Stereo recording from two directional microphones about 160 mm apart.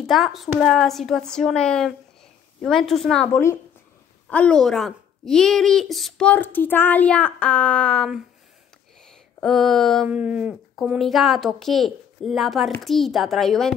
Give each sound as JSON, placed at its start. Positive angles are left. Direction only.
{"t": 0.0, "sound": "speech", "side_deg": 0}
{"t": 3.3, "sound": "a woman's voice", "side_deg": 15}
{"t": 9.0, "sound": "a sound", "side_deg": 5}
{"t": 10.0, "sound": "speech", "side_deg": -10}